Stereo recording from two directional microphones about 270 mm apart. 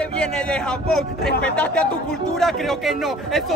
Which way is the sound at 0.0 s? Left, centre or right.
Centre.